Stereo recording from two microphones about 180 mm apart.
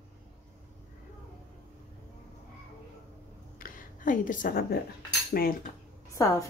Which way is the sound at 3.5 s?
50° left (ahead or behind).